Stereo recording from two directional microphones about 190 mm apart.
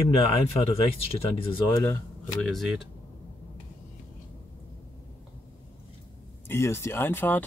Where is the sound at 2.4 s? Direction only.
Centre (ahead or behind).